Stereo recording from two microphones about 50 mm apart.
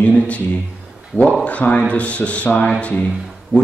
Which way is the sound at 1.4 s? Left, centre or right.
Left.